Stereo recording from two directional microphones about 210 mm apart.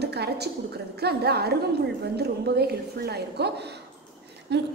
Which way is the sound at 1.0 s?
50° right (ahead or behind).